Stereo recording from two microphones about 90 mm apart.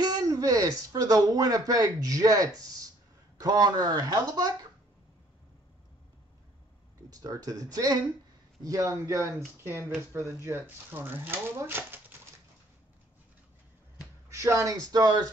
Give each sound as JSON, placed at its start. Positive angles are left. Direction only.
{"t": 0.0, "sound": "speech", "side_deg": -45}
{"t": 7.1, "sound": "speech", "side_deg": -40}
{"t": 14.3, "sound": "speech", "side_deg": -35}